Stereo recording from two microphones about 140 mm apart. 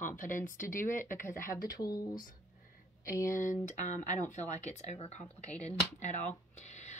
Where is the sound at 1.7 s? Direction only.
30° left (ahead or behind).